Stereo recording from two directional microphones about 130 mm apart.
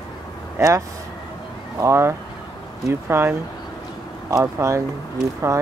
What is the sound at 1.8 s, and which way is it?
Speech, 20° right (ahead or behind).